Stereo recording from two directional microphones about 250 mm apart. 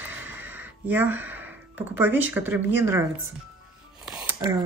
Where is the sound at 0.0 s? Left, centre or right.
Centre.